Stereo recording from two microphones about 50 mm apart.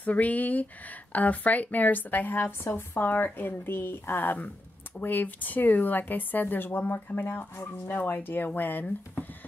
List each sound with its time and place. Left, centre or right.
0.0 s speech: left